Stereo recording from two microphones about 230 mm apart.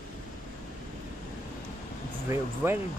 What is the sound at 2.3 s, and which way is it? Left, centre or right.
Speech, centre.